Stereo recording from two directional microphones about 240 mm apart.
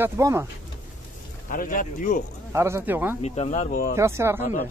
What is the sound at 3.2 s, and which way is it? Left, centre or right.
Speech, left.